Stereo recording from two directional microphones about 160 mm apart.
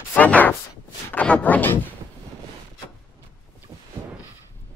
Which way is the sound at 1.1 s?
10° left (ahead or behind).